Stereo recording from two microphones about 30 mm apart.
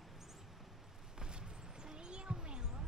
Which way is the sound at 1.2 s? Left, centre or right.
Right.